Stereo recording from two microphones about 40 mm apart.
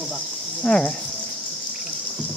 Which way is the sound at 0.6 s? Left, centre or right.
Left.